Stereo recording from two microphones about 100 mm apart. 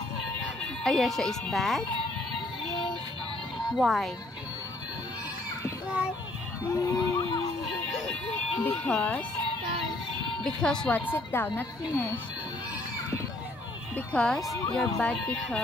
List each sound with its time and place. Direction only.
0.8 s speech: 5° left (ahead or behind)
3.5 s speech: centre (ahead or behind)
6.7 s speech: 35° left (ahead or behind)
8.6 s speech: 15° left (ahead or behind)
10.4 s speech: 10° left (ahead or behind)
11.1 s a woman's voice: 20° left (ahead or behind)
13.9 s speech: 10° left (ahead or behind)